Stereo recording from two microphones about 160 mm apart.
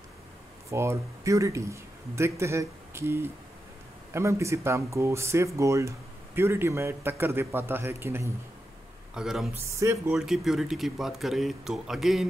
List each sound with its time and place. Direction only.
0.7 s speech: 15° right (ahead or behind)
9.1 s speech: 5° right (ahead or behind)
9.7 s speech: 15° right (ahead or behind)
10.1 s speech: centre (ahead or behind)